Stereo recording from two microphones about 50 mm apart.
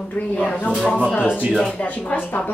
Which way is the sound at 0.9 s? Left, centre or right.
Centre.